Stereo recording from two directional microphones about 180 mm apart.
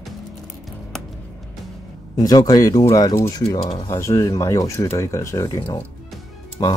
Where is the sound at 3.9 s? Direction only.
15° left (ahead or behind).